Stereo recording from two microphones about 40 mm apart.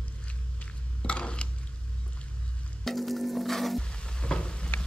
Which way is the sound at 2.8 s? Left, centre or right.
Centre.